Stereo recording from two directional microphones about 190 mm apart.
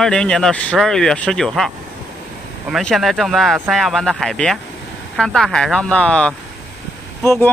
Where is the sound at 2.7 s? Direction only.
Centre (ahead or behind).